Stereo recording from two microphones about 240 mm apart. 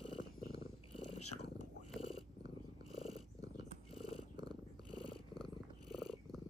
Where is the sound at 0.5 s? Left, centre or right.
Left.